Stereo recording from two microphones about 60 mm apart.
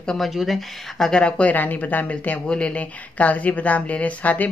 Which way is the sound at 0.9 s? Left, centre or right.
Centre.